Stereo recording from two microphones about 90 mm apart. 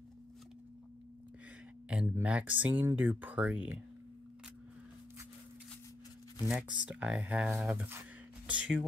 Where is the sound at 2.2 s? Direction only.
15° right (ahead or behind).